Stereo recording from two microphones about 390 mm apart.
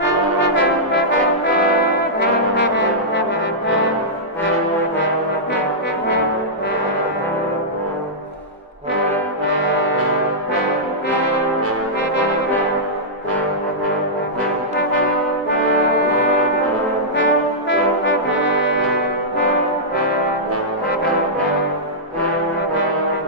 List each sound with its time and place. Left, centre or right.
2.1 s brass instrument: left
17.2 s brass instrument: left